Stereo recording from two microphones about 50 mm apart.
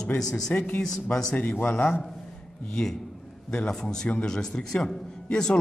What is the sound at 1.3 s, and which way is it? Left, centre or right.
Speech, left.